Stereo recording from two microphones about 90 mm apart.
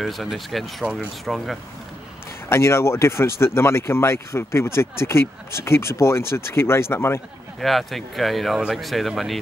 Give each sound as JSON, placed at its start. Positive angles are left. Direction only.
{"t": 0.0, "sound": "speech", "side_deg": 0}
{"t": 2.5, "sound": "speech", "side_deg": 30}
{"t": 7.6, "sound": "speech", "side_deg": 0}